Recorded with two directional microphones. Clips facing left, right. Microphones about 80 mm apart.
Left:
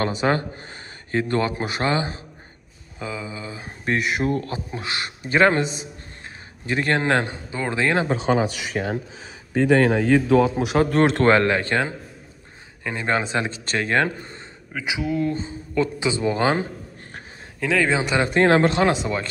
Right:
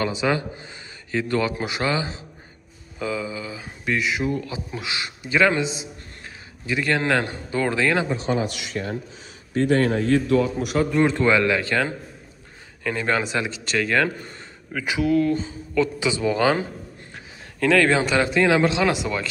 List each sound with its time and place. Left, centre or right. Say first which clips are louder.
0.0 s speech: left 1 dB; left
3.0 s speech: right 4 dB; left
7.5 s speech: right 3 dB; centre
7.8 s speech: left 3 dB; left
9.9 s a man's voice: left 2 dB; left
10.9 s speech: left 2 dB; left
12.8 s speech: even; left
14.7 s speech: right 4 dB; centre
15.3 s speech: right 1 dB; left
17.6 s speech: right 3 dB; centre
18.2 s speech: left 6 dB; left